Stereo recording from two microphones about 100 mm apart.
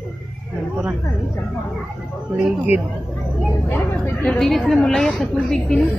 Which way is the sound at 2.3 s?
15° right (ahead or behind).